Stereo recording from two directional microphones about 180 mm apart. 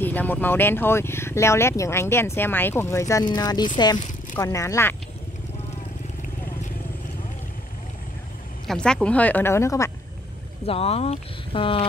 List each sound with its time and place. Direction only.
0.0 s speech: 10° left (ahead or behind)
8.6 s speech: 5° left (ahead or behind)
10.7 s speech: 35° left (ahead or behind)